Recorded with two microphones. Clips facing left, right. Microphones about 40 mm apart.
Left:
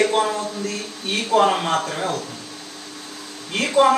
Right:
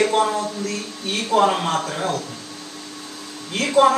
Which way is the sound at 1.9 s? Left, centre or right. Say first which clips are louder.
Right 1 dB; centre.